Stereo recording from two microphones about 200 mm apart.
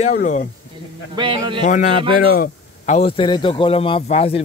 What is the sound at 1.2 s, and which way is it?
Speech, 25° right (ahead or behind).